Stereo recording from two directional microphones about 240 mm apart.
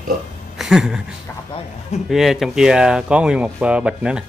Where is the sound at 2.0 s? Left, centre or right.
Centre.